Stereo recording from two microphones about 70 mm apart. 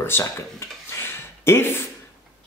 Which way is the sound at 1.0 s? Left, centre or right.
Left.